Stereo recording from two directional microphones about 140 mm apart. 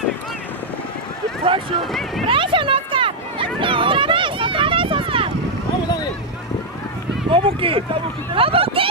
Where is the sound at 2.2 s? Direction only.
35° right (ahead or behind).